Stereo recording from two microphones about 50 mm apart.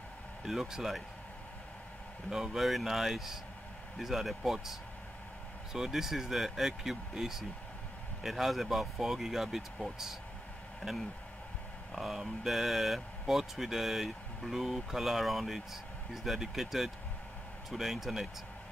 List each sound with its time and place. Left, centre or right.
0.5 s speech: centre
2.2 s speech: centre